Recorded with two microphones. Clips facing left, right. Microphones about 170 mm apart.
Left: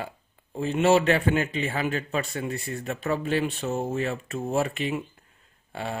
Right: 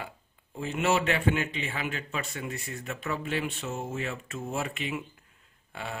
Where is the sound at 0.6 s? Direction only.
30° left (ahead or behind).